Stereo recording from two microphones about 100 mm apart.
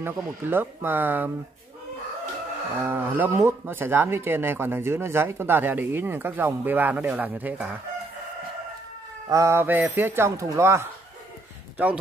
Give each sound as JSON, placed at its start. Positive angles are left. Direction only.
{"t": 0.0, "sound": "speech", "side_deg": -20}
{"t": 2.8, "sound": "speech", "side_deg": -20}
{"t": 9.3, "sound": "speech", "side_deg": -30}